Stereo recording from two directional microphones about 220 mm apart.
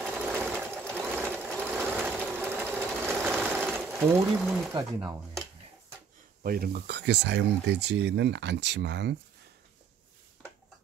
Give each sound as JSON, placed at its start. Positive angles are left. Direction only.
{"t": 0.0, "sound": "sewing machine", "side_deg": -5}
{"t": 6.4, "sound": "speech", "side_deg": -45}